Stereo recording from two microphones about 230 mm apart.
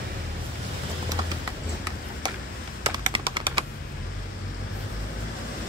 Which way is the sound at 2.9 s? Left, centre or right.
Right.